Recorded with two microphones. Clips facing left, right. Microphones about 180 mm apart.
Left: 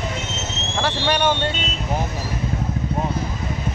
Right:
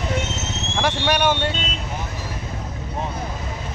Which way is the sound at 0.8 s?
10° right (ahead or behind).